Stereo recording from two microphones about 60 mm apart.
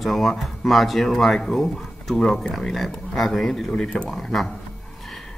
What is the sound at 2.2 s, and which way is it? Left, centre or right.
Speech, centre.